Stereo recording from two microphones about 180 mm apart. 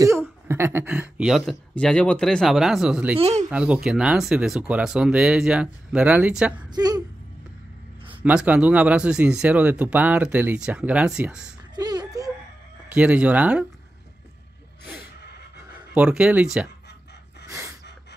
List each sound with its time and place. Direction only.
0.5 s speech: 10° right (ahead or behind)
3.2 s speech: 35° right (ahead or behind)
3.4 s speech: 5° right (ahead or behind)
6.7 s speech: 20° right (ahead or behind)
8.2 s speech: 5° right (ahead or behind)
11.7 s a sound: 20° right (ahead or behind)
12.9 s speech: 5° right (ahead or behind)
15.9 s speech: 5° right (ahead or behind)
17.5 s gasp: 15° right (ahead or behind)